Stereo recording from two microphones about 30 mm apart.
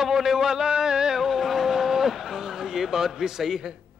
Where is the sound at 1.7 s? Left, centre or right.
Centre.